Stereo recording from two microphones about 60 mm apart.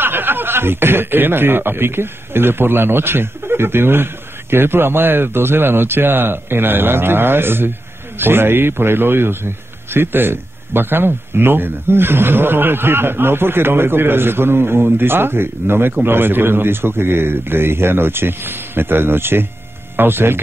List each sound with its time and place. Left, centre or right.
0.0 s a man's voice: right